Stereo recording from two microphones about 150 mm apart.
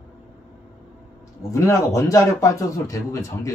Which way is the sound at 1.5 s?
20° left (ahead or behind).